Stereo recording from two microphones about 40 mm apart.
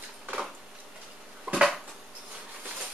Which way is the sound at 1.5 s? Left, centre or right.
Right.